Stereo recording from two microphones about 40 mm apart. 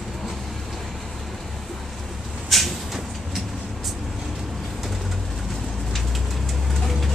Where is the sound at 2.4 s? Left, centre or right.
Centre.